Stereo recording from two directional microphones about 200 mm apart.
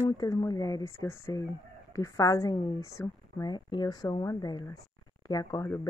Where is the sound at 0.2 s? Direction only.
20° left (ahead or behind).